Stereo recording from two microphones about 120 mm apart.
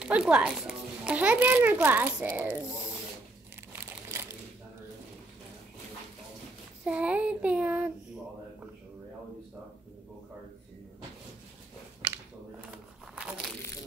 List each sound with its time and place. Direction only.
0.0 s a child's voice: 5° right (ahead or behind)
4.1 s a sound: 20° right (ahead or behind)
6.8 s child singing: 10° right (ahead or behind)
12.7 s crumpling: 10° right (ahead or behind)